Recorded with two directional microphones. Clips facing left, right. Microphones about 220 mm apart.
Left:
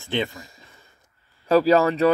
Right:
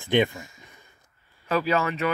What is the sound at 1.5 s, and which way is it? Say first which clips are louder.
Speech: left 8 dB; 35° left (ahead or behind).